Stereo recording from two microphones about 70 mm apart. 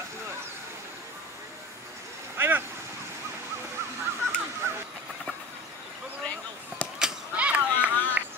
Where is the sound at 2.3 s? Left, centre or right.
Right.